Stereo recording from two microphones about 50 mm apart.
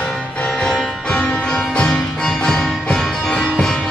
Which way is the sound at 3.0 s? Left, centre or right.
Centre.